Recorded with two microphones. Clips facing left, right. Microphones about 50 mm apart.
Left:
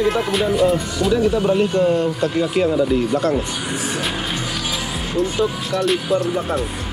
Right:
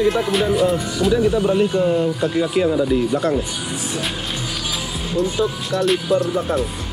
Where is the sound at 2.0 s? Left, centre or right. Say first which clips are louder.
Even; centre.